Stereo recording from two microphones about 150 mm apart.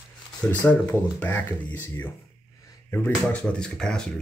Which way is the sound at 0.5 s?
10° left (ahead or behind).